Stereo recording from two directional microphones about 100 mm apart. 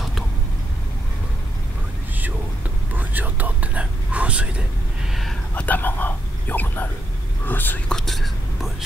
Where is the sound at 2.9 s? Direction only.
15° right (ahead or behind).